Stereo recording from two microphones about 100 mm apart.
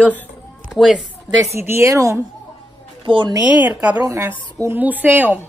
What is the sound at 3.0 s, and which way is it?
Speech, 60° right (ahead or behind).